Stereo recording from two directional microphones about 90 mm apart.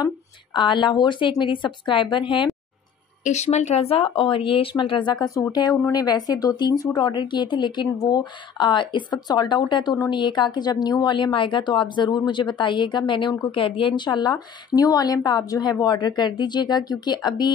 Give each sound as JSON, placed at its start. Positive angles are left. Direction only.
{"t": 0.0, "sound": "speech", "side_deg": 55}
{"t": 3.8, "sound": "speech", "side_deg": 90}
{"t": 5.2, "sound": "a woman's voice", "side_deg": 40}
{"t": 13.5, "sound": "a woman's voice", "side_deg": 75}